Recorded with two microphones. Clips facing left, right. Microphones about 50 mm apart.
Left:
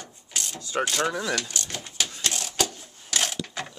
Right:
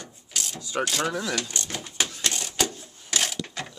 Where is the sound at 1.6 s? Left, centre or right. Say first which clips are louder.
Right 1 dB; centre.